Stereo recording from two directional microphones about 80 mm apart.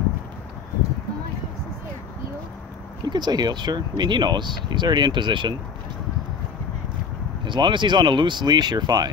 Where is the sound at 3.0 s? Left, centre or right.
Right.